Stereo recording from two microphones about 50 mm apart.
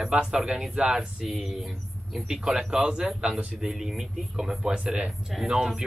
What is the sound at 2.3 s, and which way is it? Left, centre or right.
Speech, centre.